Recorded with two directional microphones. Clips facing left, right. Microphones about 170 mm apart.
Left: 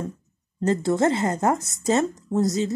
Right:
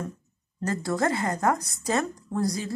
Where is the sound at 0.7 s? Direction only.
25° left (ahead or behind).